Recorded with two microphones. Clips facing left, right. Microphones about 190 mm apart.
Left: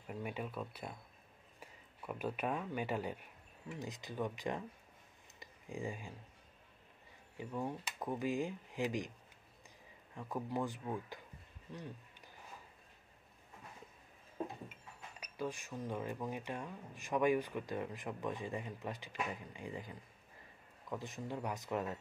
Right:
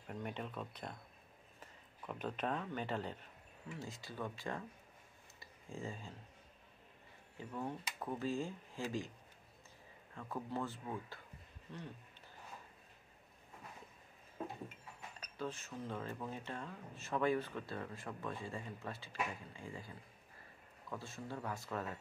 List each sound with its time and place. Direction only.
0.0 s speech: 5° left (ahead or behind)
5.4 s a sound: 15° left (ahead or behind)
7.3 s speech: 15° left (ahead or behind)
10.1 s speech: 15° left (ahead or behind)
15.1 s speech: 10° left (ahead or behind)